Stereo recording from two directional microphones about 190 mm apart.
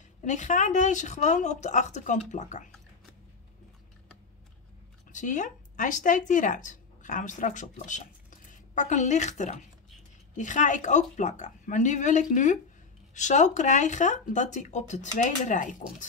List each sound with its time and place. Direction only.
0.2 s speech: 40° left (ahead or behind)
5.1 s speech: 40° left (ahead or behind)